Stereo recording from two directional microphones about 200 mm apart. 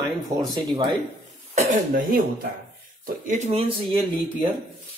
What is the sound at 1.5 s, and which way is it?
A man's voice, 45° right (ahead or behind).